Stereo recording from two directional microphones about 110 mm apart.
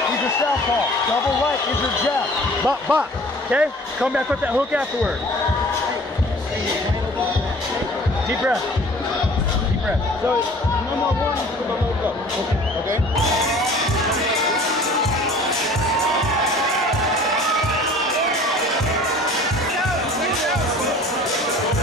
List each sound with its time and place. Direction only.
2.6 s speech: 10° right (ahead or behind)